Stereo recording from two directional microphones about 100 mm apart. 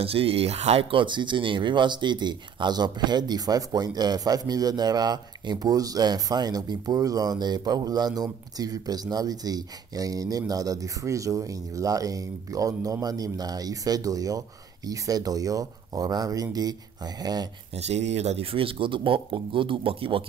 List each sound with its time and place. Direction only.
0.0 s speech: 75° right (ahead or behind); by 17.5 s 40° right (ahead or behind)
17.7 s speech: 90° right; by 20.2 s 65° right (ahead or behind)